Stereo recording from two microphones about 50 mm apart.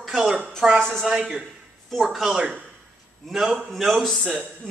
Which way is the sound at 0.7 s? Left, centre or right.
Centre.